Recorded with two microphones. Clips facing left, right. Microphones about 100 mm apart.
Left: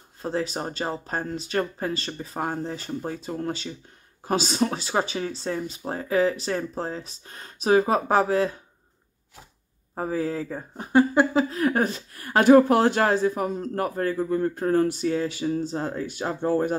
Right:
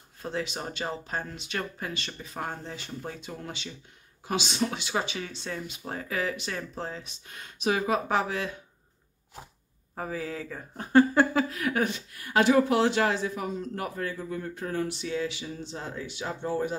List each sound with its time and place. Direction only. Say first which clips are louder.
0.2 s speech: left 5 dB; 35° left (ahead or behind)
9.9 s speech: left 7 dB; 35° left (ahead or behind)
10.8 s speech: left 1 dB; 15° left (ahead or behind)
11.4 s a woman's voice: left 5 dB; 35° left (ahead or behind); by 16.7 s 50° left (ahead or behind)